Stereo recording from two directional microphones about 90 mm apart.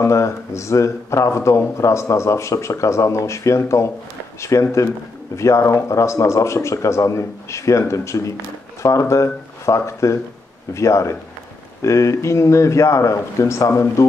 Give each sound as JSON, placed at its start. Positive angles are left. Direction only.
{"t": 0.0, "sound": "speech", "side_deg": 35}